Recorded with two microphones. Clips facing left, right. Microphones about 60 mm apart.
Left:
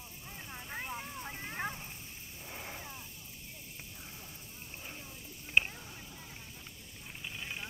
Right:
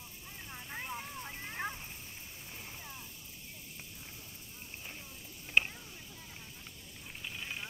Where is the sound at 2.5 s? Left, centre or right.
Left.